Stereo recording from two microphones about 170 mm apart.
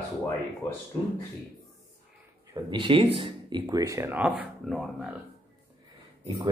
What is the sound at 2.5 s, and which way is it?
Speech, 30° right (ahead or behind).